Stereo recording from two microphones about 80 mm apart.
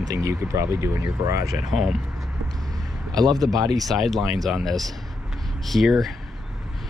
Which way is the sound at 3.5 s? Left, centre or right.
Right.